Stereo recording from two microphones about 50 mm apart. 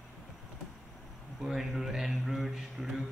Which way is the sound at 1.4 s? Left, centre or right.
Centre.